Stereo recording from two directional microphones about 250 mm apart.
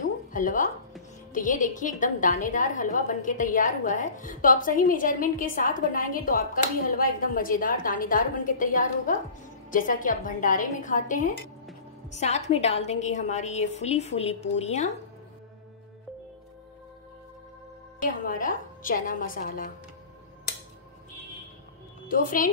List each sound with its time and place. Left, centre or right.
0.0 s a sound: left
1.3 s a woman's voice: left
18.2 s a woman's voice: left
22.0 s a woman's voice: left